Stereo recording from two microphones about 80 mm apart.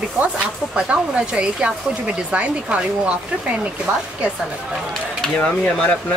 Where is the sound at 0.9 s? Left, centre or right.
Centre.